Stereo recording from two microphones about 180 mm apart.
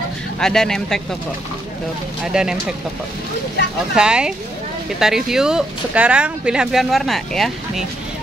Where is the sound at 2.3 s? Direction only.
5° right (ahead or behind).